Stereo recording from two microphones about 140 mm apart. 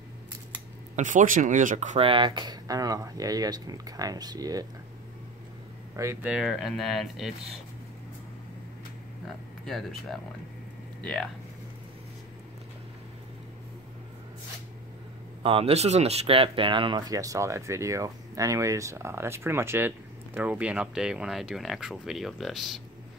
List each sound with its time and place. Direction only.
0.9 s speech: 65° right (ahead or behind)
2.0 s speech: 40° right (ahead or behind)
6.2 s speech: 5° right (ahead or behind)
9.7 s speech: centre (ahead or behind)
15.4 s speech: 45° right (ahead or behind); by 22.8 s centre (ahead or behind)